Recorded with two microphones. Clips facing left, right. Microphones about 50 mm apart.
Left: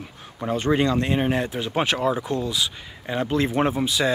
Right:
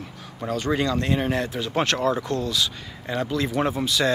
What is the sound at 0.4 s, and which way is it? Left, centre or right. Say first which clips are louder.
Speech: left 3 dB; left.